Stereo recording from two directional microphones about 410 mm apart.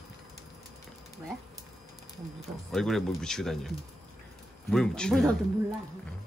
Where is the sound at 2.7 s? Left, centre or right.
Centre.